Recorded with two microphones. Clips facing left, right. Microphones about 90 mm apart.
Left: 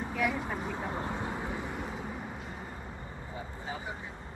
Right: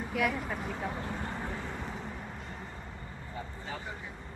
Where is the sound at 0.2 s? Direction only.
15° left (ahead or behind).